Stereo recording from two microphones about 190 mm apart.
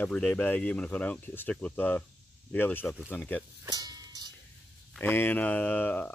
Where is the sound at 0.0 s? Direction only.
5° left (ahead or behind).